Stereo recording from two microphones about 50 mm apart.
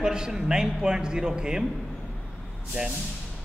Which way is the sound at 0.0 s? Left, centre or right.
Centre.